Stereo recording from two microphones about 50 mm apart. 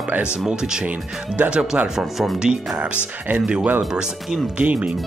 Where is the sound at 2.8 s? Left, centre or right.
Right.